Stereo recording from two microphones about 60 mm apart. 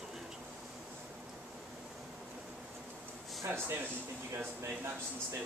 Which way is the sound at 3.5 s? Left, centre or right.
Right.